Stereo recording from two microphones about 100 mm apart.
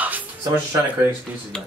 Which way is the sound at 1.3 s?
20° right (ahead or behind).